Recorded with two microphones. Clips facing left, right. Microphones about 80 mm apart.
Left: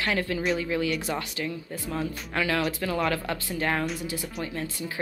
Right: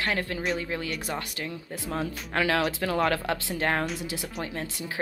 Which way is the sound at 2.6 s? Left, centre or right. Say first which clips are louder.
Right 1 dB; right.